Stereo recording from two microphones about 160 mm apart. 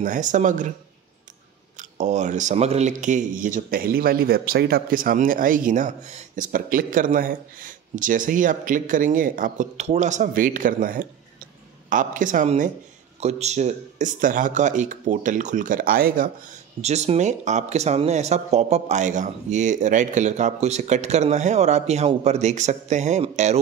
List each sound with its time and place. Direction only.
0.0 s speech: 50° right (ahead or behind)
1.8 s speech: 45° right (ahead or behind); by 16.3 s 65° right (ahead or behind)
16.8 s speech: 45° right (ahead or behind)